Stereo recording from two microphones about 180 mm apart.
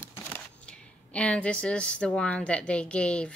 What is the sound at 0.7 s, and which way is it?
Speech, 5° left (ahead or behind).